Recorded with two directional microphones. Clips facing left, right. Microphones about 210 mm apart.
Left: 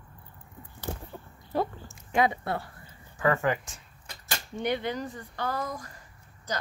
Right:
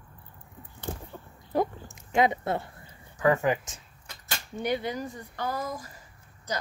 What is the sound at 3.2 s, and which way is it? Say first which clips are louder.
Speech: right 2 dB; 15° right (ahead or behind).